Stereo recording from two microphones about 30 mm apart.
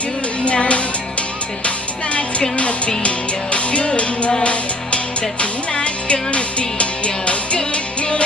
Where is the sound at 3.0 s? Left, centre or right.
Left.